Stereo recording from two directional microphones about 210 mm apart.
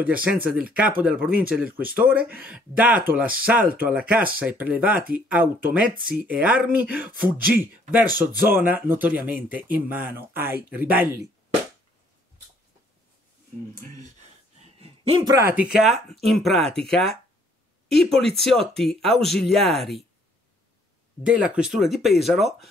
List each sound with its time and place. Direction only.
0.2 s speech: 5° right (ahead or behind)
8.0 s speech: 45° right (ahead or behind)
8.5 s speech: 10° right (ahead or behind)
14.6 s a sound: 30° right (ahead or behind)
15.2 s speech: 15° right (ahead or behind)
21.3 s speech: 5° right (ahead or behind)